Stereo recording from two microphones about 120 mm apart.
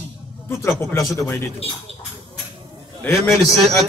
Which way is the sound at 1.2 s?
20° left (ahead or behind).